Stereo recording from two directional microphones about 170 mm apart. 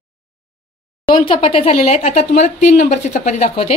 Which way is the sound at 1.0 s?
30° left (ahead or behind).